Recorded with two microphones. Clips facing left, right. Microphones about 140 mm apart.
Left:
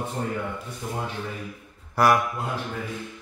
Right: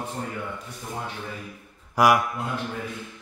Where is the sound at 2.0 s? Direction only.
10° right (ahead or behind).